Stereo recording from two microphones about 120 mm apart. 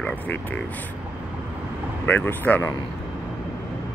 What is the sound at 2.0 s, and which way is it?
Speech, 15° left (ahead or behind).